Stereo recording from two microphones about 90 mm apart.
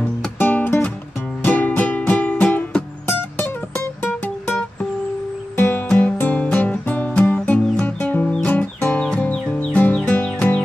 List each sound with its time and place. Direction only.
0.4 s music: 20° left (ahead or behind)
5.6 s music: 20° left (ahead or behind)
9.0 s music: 10° left (ahead or behind)